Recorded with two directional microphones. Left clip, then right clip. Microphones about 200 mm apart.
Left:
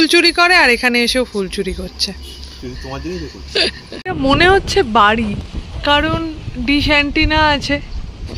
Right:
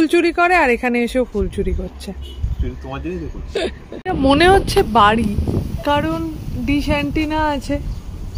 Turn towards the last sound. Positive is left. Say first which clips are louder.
# left 6 dB
turn(degrees=-5)  # may be behind; listen again after turning